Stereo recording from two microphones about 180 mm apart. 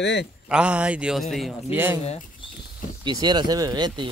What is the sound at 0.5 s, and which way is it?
Speech, 5° right (ahead or behind).